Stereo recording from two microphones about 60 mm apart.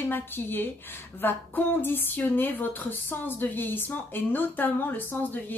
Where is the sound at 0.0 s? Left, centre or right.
Left.